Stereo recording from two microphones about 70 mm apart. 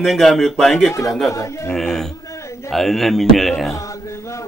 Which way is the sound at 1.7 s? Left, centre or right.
Centre.